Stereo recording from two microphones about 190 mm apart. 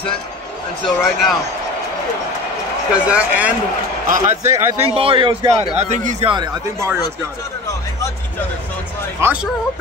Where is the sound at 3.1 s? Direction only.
5° right (ahead or behind).